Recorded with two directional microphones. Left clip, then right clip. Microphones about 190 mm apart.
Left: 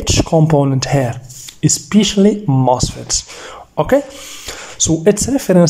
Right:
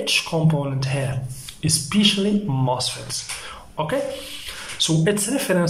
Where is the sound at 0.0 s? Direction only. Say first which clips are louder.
Left 7 dB; 40° left (ahead or behind).